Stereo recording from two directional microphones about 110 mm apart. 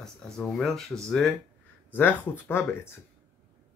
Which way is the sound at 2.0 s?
15° left (ahead or behind).